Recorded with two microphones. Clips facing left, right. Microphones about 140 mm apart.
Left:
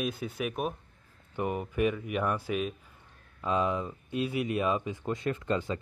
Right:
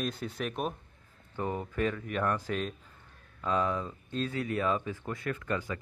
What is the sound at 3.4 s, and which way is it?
Speech, 20° left (ahead or behind).